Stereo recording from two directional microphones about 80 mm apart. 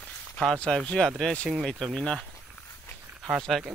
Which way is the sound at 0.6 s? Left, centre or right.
Centre.